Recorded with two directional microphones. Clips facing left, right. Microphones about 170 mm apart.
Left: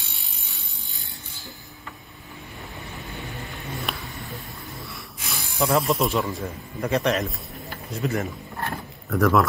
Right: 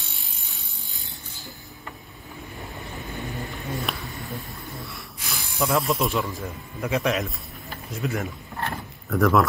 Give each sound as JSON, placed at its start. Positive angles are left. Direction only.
{"t": 3.4, "sound": "snort", "side_deg": 0}
{"t": 8.0, "sound": "speech", "side_deg": 0}